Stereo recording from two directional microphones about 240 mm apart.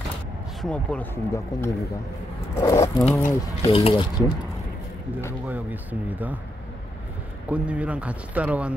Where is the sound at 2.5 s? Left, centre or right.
Centre.